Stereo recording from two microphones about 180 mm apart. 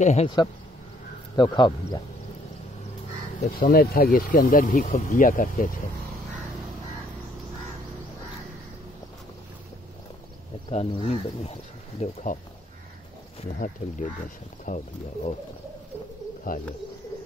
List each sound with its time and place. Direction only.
0.0 s speech: 40° left (ahead or behind)
1.3 s speech: 25° left (ahead or behind)
3.3 s speech: 50° left (ahead or behind)
10.7 s speech: 35° left (ahead or behind)
13.6 s speech: 45° left (ahead or behind)
16.5 s speech: 50° left (ahead or behind)